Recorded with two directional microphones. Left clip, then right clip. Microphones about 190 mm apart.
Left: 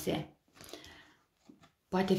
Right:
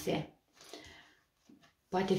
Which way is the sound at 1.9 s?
45° left (ahead or behind).